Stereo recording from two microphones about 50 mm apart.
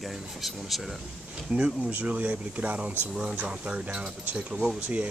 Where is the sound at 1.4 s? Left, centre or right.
Right.